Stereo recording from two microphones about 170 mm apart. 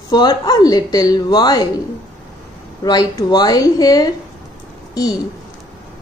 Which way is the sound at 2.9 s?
25° left (ahead or behind).